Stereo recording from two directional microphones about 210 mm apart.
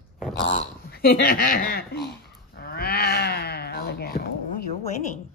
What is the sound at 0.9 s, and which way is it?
Speech, 50° left (ahead or behind).